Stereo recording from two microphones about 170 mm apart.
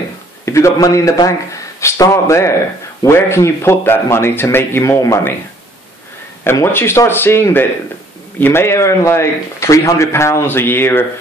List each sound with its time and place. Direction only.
0.5 s a man's voice: 15° left (ahead or behind)
6.4 s a man's voice: 15° left (ahead or behind)